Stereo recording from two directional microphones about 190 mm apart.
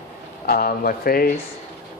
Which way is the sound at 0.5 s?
50° left (ahead or behind).